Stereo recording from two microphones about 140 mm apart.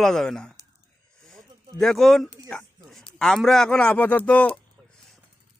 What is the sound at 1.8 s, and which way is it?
A man's voice, centre (ahead or behind).